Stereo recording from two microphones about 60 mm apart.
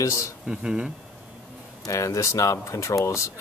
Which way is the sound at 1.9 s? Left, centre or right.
Left.